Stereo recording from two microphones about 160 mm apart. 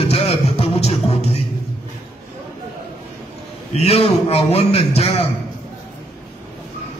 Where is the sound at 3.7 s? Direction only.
40° left (ahead or behind).